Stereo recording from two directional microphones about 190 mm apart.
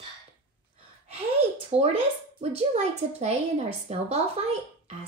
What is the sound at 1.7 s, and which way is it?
Speech, 35° right (ahead or behind).